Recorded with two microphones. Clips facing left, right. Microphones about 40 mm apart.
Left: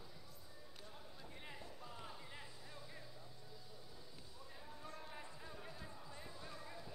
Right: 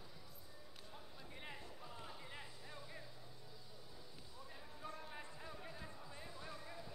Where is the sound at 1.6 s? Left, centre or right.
Centre.